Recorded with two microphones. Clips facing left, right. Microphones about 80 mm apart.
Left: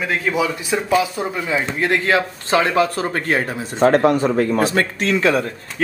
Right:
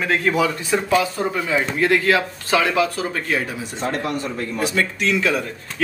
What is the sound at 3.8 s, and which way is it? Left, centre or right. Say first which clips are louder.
Speech: left 11 dB; left.